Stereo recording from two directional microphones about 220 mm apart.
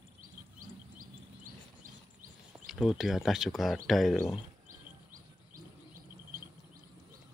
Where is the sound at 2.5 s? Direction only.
Centre (ahead or behind).